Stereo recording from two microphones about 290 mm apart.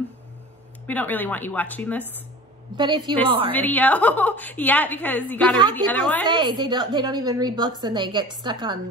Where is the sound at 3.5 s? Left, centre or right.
Centre.